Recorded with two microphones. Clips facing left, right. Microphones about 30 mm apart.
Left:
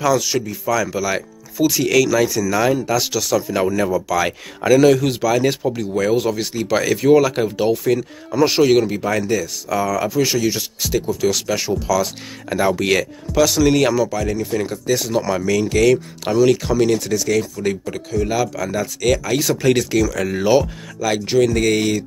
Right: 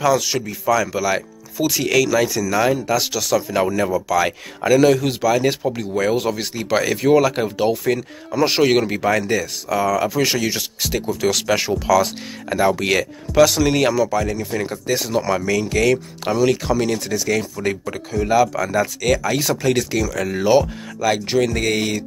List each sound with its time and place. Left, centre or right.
0.0 s speech: centre
8.8 s speech: right
10.2 s speech: right
10.9 s speech: right
11.3 s speech: right
12.4 s speech: centre
13.3 s speech: centre
13.7 s speech: centre